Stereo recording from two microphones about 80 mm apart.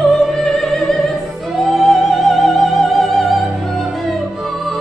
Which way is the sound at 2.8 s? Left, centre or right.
Centre.